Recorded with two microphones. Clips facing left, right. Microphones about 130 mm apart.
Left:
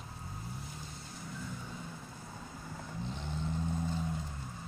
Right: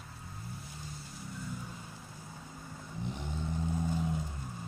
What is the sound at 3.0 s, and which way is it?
Vehicle, 15° right (ahead or behind).